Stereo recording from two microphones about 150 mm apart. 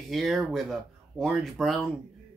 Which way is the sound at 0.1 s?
Centre (ahead or behind).